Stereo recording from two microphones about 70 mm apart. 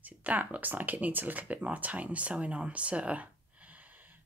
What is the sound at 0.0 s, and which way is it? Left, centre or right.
Speech, right.